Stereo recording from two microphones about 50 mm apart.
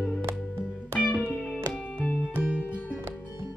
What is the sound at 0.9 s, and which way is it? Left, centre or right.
Music, left.